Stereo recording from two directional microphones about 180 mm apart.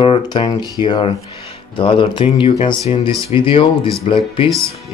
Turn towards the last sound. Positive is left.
turn(degrees=30)  # may be behind; listen again after turning